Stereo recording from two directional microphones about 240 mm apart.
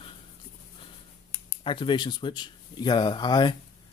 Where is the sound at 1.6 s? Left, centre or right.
Centre.